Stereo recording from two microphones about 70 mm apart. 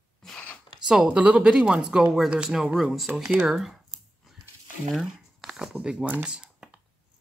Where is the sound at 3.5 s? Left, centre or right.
Centre.